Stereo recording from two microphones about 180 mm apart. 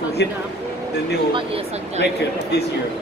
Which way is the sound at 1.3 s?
30° right (ahead or behind).